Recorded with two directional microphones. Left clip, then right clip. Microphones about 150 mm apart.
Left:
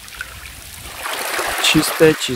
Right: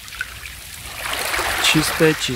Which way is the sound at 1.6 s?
20° left (ahead or behind).